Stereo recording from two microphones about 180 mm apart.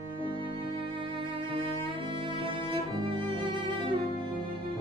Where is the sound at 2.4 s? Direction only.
30° right (ahead or behind).